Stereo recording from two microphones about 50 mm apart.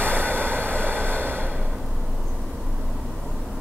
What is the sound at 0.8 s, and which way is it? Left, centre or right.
Vehicle, right.